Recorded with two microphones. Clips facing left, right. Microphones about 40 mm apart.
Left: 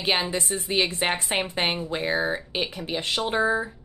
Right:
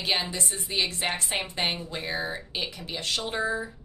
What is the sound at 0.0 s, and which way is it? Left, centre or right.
Speech, left.